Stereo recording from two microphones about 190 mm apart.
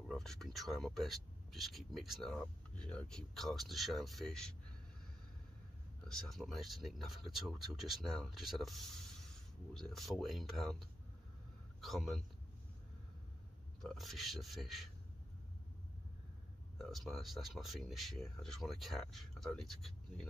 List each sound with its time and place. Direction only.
0.1 s speech: centre (ahead or behind)
6.0 s speech: 5° left (ahead or behind)
13.8 s speech: centre (ahead or behind)
16.9 s speech: centre (ahead or behind)